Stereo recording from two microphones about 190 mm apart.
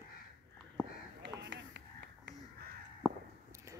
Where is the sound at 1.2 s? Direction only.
65° right (ahead or behind).